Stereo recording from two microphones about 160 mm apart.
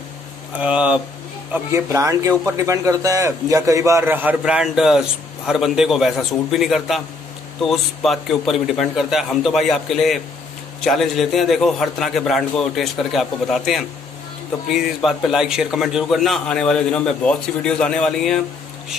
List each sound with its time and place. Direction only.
0.6 s speech: 5° right (ahead or behind)
1.5 s a man's voice: 15° right (ahead or behind); by 18.4 s 5° left (ahead or behind)